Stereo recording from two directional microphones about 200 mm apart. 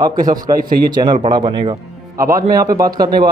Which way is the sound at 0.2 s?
45° right (ahead or behind).